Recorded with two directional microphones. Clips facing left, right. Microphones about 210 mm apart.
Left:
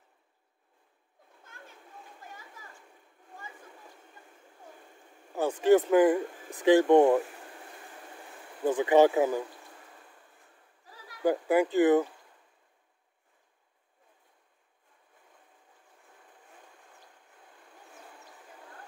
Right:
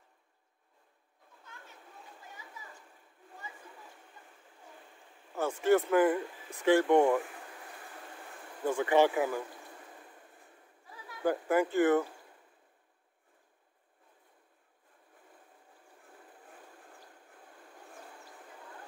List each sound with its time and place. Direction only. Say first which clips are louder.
5.3 s speech: left 4 dB; 15° left (ahead or behind)
8.6 s speech: left 5 dB; 20° left (ahead or behind)
11.2 s speech: left 4 dB; 15° left (ahead or behind)